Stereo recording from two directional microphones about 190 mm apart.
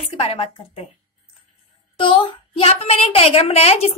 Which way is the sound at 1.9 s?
25° left (ahead or behind).